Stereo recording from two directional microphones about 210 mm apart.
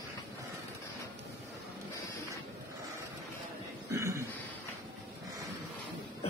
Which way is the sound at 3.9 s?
15° right (ahead or behind).